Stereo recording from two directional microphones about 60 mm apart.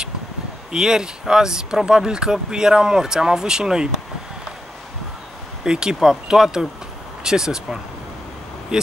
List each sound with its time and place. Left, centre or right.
0.7 s speech: centre
5.6 s speech: centre